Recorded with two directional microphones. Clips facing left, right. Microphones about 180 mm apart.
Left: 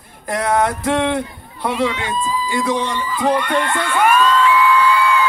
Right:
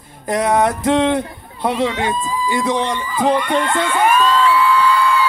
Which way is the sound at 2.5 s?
20° right (ahead or behind).